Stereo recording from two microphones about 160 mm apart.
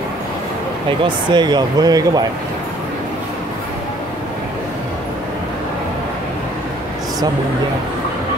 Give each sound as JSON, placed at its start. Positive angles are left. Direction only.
{"t": 1.0, "sound": "speech", "side_deg": -30}